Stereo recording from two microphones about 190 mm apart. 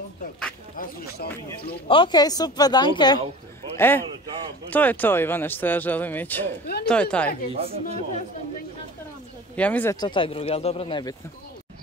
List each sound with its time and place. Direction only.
0.7 s speech: 55° left (ahead or behind)
1.9 s speech: 25° left (ahead or behind)
3.7 s a man's voice: 10° left (ahead or behind)
7.5 s speech: 30° right (ahead or behind)
9.6 s a man's voice: 10° left (ahead or behind)
9.9 s speech: 25° left (ahead or behind)